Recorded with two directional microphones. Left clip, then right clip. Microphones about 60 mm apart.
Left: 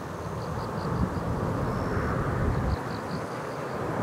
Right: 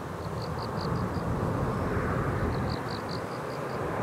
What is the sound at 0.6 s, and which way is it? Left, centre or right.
Vehicle, centre.